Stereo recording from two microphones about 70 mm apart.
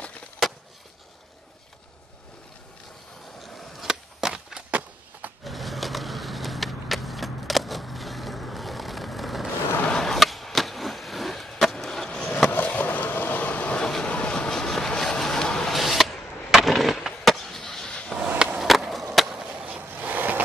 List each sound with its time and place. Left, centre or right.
3.3 s skateboard: centre
4.6 s a sound: right
5.4 s vehicle: centre
9.8 s skateboard: centre
12.6 s vehicle: left; by 15.7 s centre
15.7 s skateboard: centre
18.2 s skateboard: right
18.6 s skateboard: centre
19.1 s chop: centre
19.4 s chop: centre
19.8 s vehicle: right